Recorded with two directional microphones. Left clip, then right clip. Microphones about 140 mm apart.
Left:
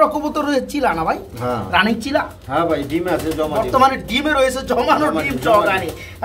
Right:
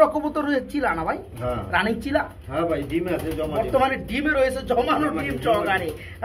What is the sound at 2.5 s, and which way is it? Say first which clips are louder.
Speech: left 6 dB; 40° left (ahead or behind).